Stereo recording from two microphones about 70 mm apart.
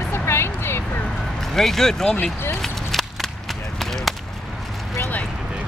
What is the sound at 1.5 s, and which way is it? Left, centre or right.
Speech, centre.